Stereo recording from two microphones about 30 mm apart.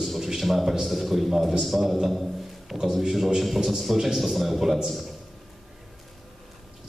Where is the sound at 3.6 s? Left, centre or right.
Centre.